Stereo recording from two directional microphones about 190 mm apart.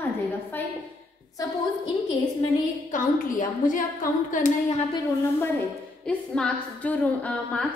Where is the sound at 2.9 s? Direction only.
45° left (ahead or behind).